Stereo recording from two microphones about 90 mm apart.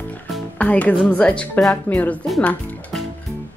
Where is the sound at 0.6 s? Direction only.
15° left (ahead or behind).